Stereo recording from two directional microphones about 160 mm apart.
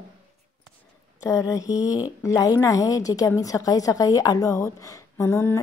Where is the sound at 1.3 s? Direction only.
20° left (ahead or behind).